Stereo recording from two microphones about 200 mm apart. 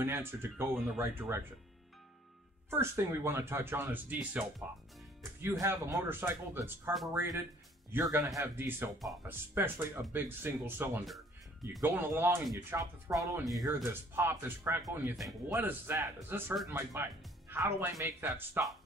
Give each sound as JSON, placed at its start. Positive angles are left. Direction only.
{"t": 0.0, "sound": "speech", "side_deg": -10}
{"t": 2.7, "sound": "speech", "side_deg": -10}